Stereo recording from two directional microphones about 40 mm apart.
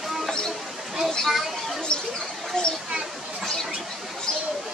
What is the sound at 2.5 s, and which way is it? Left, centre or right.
Speech, centre.